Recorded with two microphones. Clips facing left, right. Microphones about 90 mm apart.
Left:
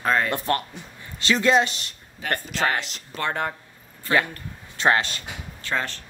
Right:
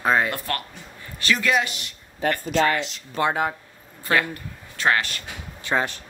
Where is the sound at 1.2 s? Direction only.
25° left (ahead or behind).